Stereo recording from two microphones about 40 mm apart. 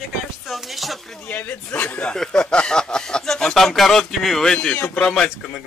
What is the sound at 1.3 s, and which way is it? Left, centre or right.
Speech, left.